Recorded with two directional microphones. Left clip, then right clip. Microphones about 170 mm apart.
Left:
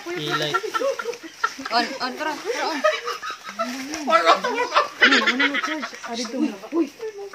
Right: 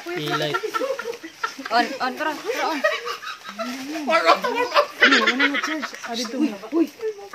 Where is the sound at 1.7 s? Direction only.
15° right (ahead or behind).